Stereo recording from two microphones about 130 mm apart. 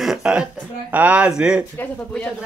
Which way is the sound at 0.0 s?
5° right (ahead or behind).